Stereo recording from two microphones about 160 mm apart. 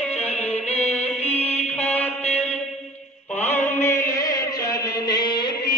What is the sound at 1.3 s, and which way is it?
Music, 40° left (ahead or behind).